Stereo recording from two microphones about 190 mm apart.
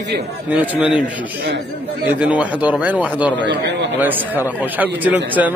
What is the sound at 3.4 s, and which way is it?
Speech, 65° right (ahead or behind).